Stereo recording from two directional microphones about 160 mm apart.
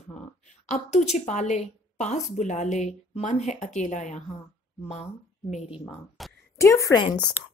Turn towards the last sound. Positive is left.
turn(degrees=30)  # may be behind; listen again after turning